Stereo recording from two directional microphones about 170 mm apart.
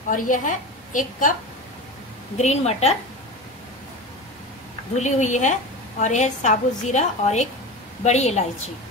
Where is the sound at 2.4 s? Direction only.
40° left (ahead or behind).